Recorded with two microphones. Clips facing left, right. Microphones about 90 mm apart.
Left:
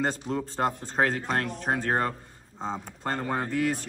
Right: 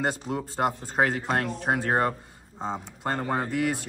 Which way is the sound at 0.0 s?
10° right (ahead or behind).